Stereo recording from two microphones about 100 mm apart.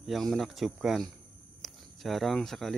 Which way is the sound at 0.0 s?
Centre (ahead or behind).